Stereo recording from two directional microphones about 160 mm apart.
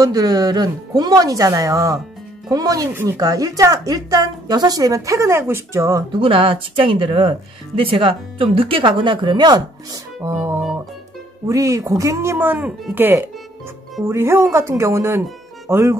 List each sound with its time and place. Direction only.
0.0 s a woman's voice: 25° right (ahead or behind)
6.2 s speech: 35° right (ahead or behind)
11.4 s speech: 20° right (ahead or behind)